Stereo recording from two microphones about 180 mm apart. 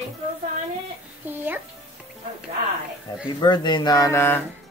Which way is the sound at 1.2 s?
10° right (ahead or behind).